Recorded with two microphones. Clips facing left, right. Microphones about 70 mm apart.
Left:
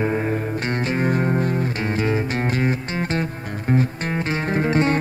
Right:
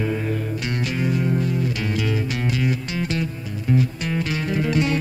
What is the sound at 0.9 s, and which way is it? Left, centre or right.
Music, left.